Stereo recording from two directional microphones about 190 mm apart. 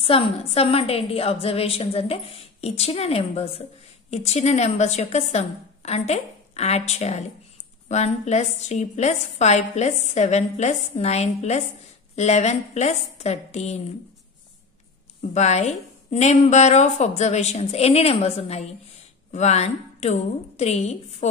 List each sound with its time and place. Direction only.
0.0 s a woman's voice: 30° left (ahead or behind)
15.3 s a woman's voice: 35° left (ahead or behind)